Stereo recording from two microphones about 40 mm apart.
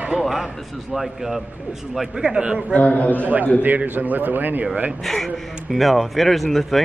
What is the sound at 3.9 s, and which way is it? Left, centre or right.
Speech, right.